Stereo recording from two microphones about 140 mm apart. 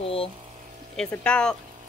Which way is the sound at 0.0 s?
45° left (ahead or behind).